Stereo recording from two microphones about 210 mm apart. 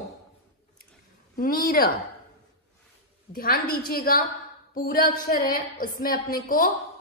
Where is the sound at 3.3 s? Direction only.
45° left (ahead or behind).